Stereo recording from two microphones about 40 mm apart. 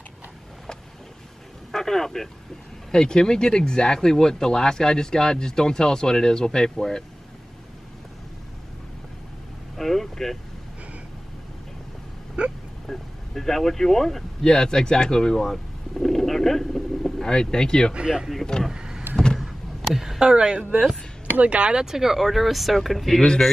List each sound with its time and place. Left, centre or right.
1.7 s speech: centre
9.8 s vehicle: centre
12.4 s a sound: right
12.8 s speech: centre
17.2 s speech: centre
17.9 s speech: centre
18.7 s vehicle: centre
19.3 s a sound: centre
20.2 s speech: right
21.4 s speech: right
21.7 s speech: centre
23.1 s speech: left